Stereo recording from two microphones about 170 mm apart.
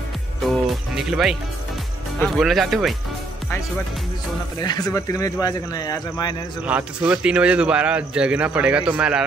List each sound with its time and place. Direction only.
0.5 s speech: centre (ahead or behind)
4.6 s speech: 25° left (ahead or behind)
6.6 s a man's voice: 5° right (ahead or behind)